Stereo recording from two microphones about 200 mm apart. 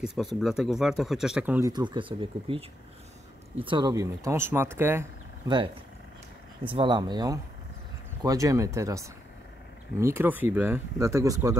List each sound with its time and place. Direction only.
0.0 s speech: centre (ahead or behind)
1.7 s speech: 25° right (ahead or behind)
3.6 s speech: 20° right (ahead or behind)
6.6 s speech: 25° right (ahead or behind)